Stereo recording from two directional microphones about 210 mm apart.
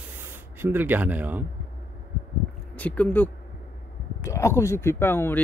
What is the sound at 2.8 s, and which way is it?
Speech, 5° left (ahead or behind).